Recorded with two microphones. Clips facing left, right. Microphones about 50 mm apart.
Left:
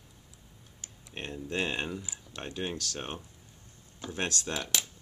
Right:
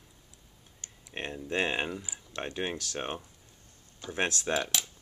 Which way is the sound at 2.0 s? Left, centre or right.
Centre.